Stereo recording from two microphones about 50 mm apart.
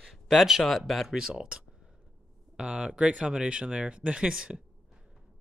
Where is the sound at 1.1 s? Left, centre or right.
Centre.